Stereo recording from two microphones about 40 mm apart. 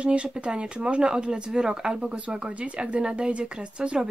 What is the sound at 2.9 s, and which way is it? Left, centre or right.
Speech, right.